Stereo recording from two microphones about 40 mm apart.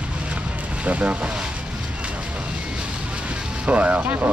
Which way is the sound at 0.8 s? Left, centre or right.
Right.